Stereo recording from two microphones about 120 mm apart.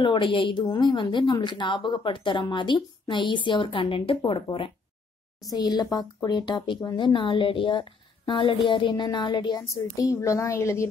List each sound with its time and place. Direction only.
0.0 s a woman's voice: 45° left (ahead or behind)
5.5 s a woman's voice: 35° left (ahead or behind)